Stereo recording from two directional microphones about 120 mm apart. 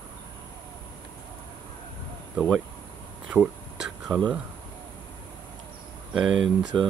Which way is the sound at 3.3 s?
Centre (ahead or behind).